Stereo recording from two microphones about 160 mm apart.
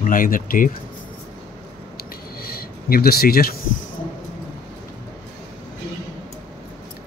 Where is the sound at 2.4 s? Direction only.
70° left (ahead or behind).